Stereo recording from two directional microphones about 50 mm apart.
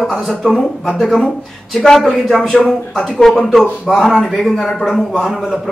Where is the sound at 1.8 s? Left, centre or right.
Centre.